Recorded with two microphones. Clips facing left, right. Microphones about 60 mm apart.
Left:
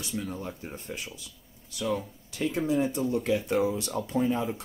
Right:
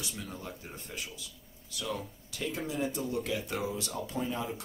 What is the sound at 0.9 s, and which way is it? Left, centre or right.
Speech, left.